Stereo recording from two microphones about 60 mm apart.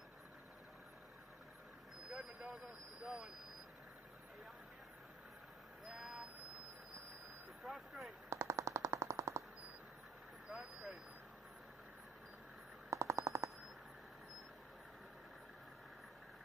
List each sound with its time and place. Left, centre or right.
2.0 s vehicle: centre
5.9 s vehicle: centre
7.6 s vehicle: centre
8.3 s machine gun: right
10.5 s vehicle: centre
12.9 s machine gun: right